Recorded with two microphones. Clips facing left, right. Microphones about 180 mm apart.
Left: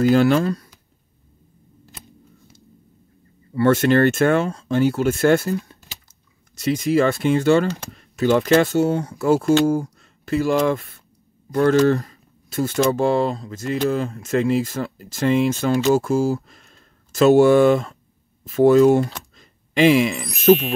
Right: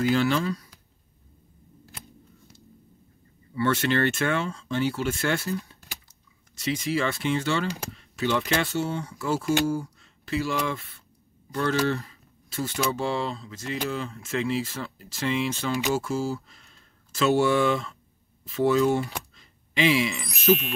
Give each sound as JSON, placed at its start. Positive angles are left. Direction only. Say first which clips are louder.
{"t": 0.0, "sound": "speech", "louder": "left 8 dB", "side_deg": 45}
{"t": 3.5, "sound": "speech", "louder": "left 8 dB", "side_deg": 45}
{"t": 19.3, "sound": "a sound", "louder": "left 10 dB", "side_deg": 45}
{"t": 20.2, "sound": "speech", "louder": "left 7 dB", "side_deg": 0}